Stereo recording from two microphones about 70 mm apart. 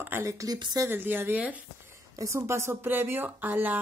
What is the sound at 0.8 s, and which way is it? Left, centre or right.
Speech, right.